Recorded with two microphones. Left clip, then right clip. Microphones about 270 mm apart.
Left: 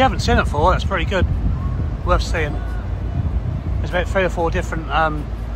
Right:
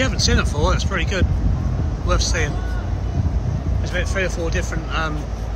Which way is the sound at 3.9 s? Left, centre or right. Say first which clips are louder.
Left 4 dB; centre.